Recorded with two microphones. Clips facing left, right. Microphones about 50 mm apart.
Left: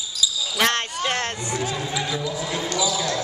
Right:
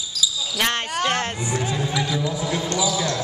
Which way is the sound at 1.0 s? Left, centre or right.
Centre.